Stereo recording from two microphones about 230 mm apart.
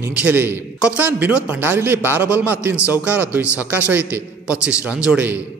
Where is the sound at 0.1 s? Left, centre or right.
Centre.